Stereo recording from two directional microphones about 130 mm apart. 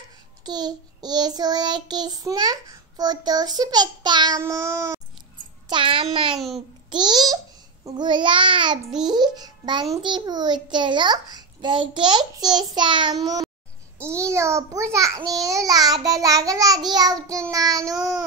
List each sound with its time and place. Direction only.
0.5 s child singing: 30° right (ahead or behind)
4.4 s a child's voice: 20° right (ahead or behind)
5.7 s child singing: 40° right (ahead or behind)
6.3 s a child's voice: centre (ahead or behind)
6.9 s child singing: 35° right (ahead or behind)
14.0 s a child's voice: 20° right (ahead or behind)